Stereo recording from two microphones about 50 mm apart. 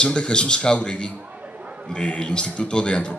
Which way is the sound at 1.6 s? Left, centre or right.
Right.